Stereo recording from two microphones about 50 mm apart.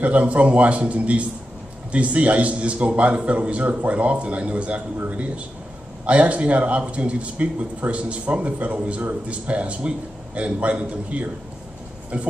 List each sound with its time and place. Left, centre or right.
0.0 s speech: right